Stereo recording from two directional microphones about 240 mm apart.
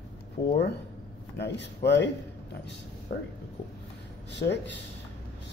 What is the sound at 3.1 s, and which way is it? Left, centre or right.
Speech, left.